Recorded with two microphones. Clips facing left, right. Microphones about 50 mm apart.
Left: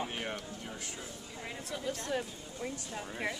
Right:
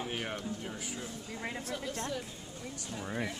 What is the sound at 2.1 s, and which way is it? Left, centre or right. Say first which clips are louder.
Speech: left 3 dB; left.